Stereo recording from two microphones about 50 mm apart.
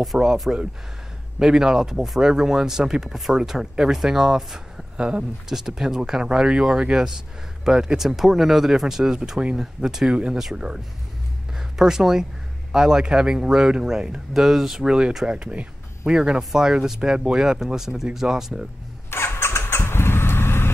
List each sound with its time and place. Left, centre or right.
0.1 s speech: centre
1.4 s speech: centre
4.9 s speech: right
5.5 s speech: centre
11.8 s speech: centre
19.0 s vehicle: left